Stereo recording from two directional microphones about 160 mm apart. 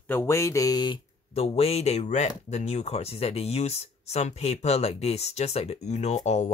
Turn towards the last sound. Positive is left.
turn(degrees=45)  # may be behind; listen again after turning